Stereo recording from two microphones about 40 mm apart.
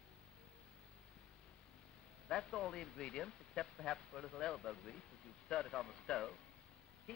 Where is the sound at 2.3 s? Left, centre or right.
Centre.